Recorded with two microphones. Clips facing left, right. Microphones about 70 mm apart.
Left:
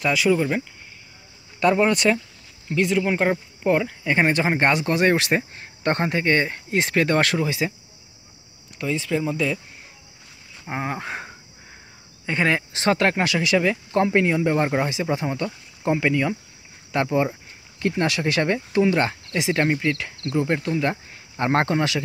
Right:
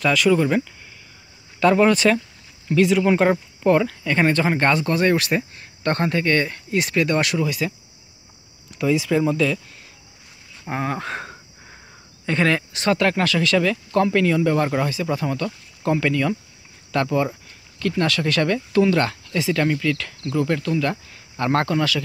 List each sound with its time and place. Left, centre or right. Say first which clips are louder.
0.0 s speech: right 2 dB; centre
2.7 s speech: right 4 dB; centre; by 7.7 s left
8.7 s speech: right 5 dB; centre
10.6 s speech: right 3 dB; centre
13.2 s speech: right 1 dB; centre